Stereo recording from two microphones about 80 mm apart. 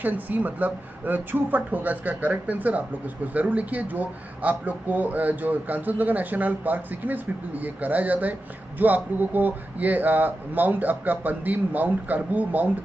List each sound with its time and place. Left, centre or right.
0.0 s speech: right